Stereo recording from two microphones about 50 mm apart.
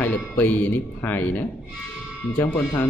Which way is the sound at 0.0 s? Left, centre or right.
Left.